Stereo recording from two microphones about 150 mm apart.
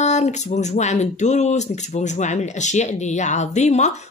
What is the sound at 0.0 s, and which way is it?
Speech, 50° left (ahead or behind).